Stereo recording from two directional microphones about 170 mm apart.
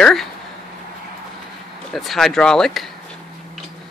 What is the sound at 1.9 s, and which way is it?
Speech, centre (ahead or behind).